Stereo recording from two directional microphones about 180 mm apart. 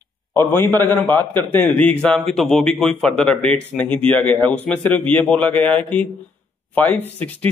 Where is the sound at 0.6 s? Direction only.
20° right (ahead or behind).